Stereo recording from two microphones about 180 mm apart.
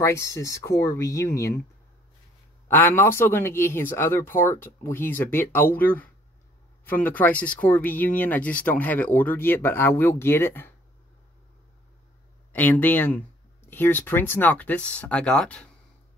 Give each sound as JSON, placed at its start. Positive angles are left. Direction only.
{"t": 0.0, "sound": "speech", "side_deg": 15}
{"t": 2.7, "sound": "speech", "side_deg": 10}
{"t": 12.5, "sound": "speech", "side_deg": 10}